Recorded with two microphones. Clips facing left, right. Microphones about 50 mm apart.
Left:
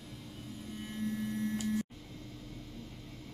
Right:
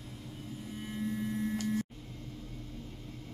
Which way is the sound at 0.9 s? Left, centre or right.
Centre.